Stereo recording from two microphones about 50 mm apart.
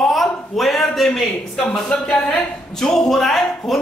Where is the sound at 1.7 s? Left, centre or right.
Centre.